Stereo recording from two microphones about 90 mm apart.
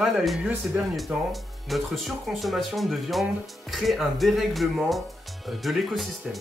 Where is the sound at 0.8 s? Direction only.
20° right (ahead or behind).